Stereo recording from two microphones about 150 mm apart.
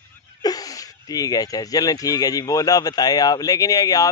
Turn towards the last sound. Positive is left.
turn(degrees=25)  # may be behind; listen again after turning